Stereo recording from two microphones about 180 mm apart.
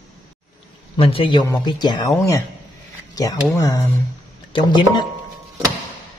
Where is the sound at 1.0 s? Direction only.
30° left (ahead or behind).